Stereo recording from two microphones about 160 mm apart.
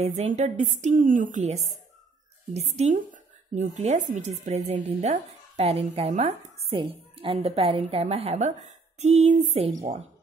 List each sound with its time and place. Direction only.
0.0 s a woman's voice: 45° right (ahead or behind)